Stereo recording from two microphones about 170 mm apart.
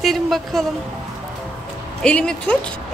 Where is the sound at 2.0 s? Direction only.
5° left (ahead or behind).